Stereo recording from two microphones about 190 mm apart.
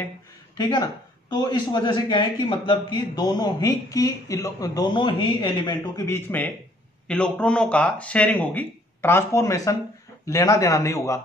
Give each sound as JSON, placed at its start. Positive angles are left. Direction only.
{"t": 0.6, "sound": "a man's voice", "side_deg": 20}